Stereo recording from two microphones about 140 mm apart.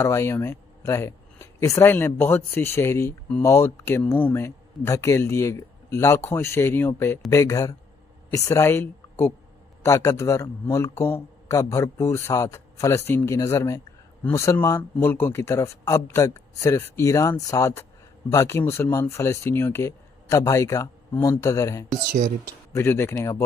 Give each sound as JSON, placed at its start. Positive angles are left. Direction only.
{"t": 0.0, "sound": "a man's voice", "side_deg": 20}